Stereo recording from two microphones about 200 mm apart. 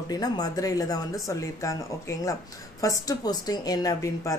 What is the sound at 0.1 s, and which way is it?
A woman's voice, 20° left (ahead or behind).